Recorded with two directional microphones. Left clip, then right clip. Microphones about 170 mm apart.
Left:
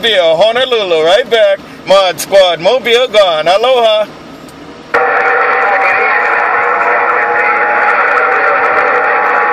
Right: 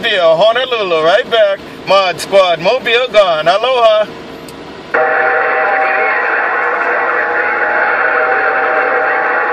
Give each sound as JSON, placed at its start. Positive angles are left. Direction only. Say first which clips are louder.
{"t": 0.4, "sound": "speech", "louder": "left 2 dB", "side_deg": 35}
{"t": 4.9, "sound": "radio", "louder": "left 2 dB", "side_deg": 45}